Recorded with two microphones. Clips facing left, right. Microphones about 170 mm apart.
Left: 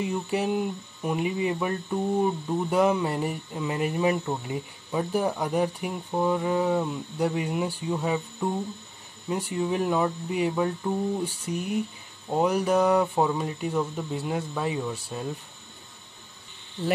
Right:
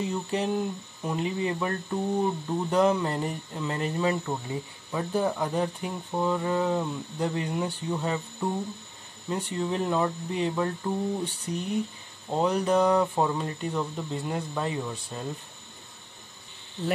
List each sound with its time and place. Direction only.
0.0 s speech: 10° left (ahead or behind)